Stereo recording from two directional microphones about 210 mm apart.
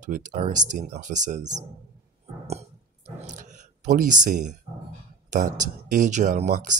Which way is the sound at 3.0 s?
35° right (ahead or behind).